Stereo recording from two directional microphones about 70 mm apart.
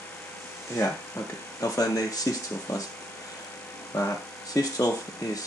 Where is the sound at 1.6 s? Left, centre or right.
Left.